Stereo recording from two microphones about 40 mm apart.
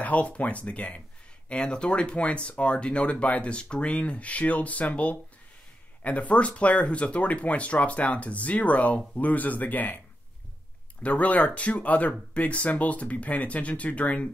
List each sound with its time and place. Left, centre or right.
0.0 s speech: left
1.5 s speech: left
11.0 s speech: left